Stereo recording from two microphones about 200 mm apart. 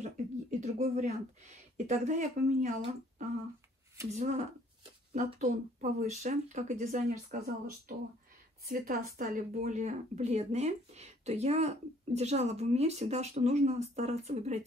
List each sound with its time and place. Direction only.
0.0 s speech: 35° right (ahead or behind)
8.6 s speech: 45° right (ahead or behind)